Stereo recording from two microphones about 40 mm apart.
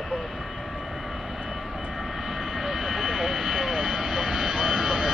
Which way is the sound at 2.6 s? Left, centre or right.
Centre.